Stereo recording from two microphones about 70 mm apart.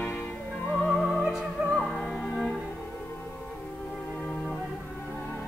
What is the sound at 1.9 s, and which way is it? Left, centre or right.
Music, centre.